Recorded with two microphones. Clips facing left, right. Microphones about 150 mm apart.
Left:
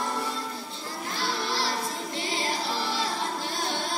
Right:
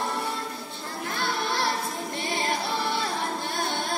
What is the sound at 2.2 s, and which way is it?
Choir, 55° right (ahead or behind).